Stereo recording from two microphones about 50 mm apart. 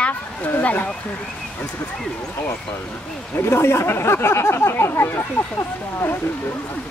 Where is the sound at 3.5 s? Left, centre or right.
Left.